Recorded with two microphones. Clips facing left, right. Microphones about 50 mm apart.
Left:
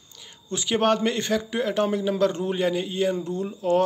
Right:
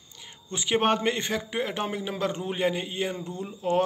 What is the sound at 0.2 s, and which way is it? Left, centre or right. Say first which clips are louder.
A man's voice: left 3 dB; right.